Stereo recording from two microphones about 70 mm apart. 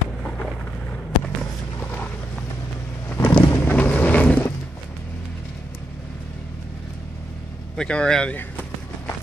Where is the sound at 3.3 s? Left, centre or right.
Left.